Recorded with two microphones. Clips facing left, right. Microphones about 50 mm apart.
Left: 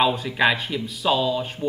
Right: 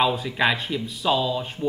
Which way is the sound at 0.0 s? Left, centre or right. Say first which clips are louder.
Left 2 dB; centre.